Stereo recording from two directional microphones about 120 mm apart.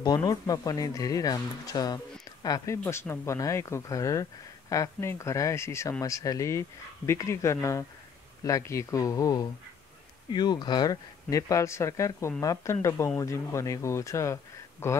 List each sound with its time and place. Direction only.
0.0 s speech: 35° left (ahead or behind)